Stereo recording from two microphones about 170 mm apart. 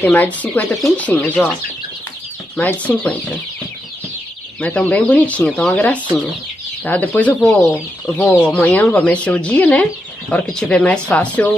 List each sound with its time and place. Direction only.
0.0 s speech: 10° left (ahead or behind)
2.5 s speech: 10° left (ahead or behind)
4.6 s speech: 10° left (ahead or behind)
7.7 s speech: 15° left (ahead or behind)